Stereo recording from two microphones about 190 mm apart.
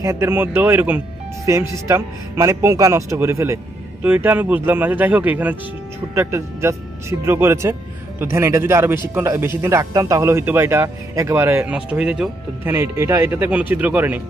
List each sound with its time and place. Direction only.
0.0 s speech: 15° right (ahead or behind)